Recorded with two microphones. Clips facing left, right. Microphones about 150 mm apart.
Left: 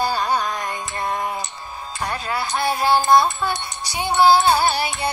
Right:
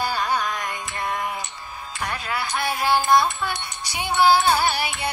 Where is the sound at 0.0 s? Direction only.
35° left (ahead or behind).